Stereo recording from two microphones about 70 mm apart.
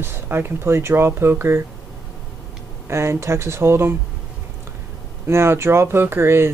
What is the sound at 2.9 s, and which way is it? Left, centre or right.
Speech, right.